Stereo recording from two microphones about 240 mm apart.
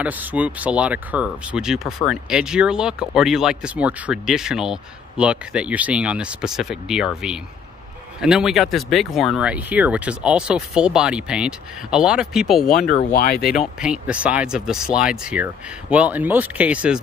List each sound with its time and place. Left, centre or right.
0.0 s speech: centre
8.2 s speech: centre
13.1 s speech: left
13.4 s speech: centre